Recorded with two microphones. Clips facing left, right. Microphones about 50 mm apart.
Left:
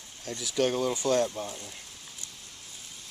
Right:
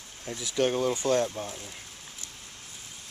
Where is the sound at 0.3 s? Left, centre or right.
Centre.